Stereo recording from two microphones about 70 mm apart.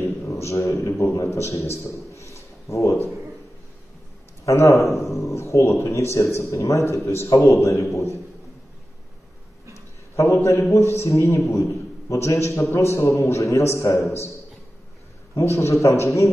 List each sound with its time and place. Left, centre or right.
0.2 s a man's voice: left
4.5 s a man's voice: left
10.1 s a man's voice: left
15.3 s a man's voice: left